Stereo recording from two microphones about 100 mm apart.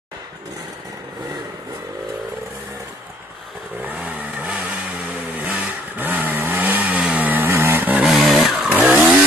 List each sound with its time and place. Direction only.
3.8 s vehicle: 15° right (ahead or behind)
8.3 s vehicle: 5° right (ahead or behind)
8.5 s chainsaw: 15° right (ahead or behind)